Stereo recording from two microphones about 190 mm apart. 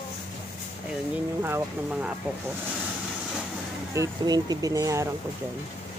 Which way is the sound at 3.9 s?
20° right (ahead or behind).